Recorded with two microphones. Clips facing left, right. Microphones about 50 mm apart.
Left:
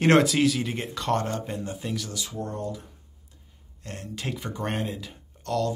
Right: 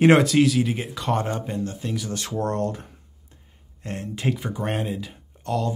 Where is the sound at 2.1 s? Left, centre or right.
Right.